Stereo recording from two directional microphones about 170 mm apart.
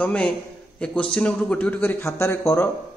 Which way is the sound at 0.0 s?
10° left (ahead or behind).